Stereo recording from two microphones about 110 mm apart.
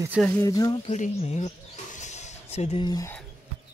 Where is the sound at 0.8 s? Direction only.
90° left.